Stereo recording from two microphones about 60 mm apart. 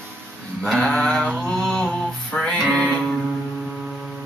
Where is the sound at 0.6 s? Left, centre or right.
Centre.